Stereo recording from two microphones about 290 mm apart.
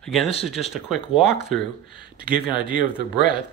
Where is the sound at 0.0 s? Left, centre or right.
Centre.